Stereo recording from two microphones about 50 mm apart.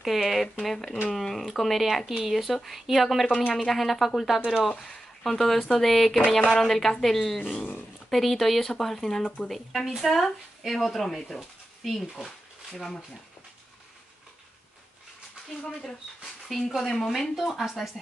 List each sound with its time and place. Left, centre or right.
0.0 s speech: centre
7.3 s speech: left
8.1 s speech: centre
16.4 s speech: centre